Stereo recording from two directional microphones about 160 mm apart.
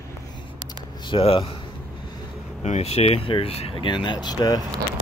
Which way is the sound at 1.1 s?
35° left (ahead or behind).